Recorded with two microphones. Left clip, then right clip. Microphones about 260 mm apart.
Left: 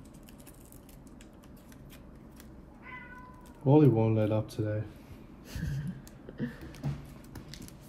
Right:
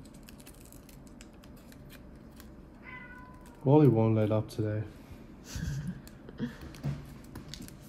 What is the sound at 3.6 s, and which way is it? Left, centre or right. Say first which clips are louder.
Speech: even; right.